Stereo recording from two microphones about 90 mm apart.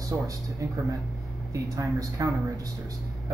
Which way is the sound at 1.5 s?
40° right (ahead or behind).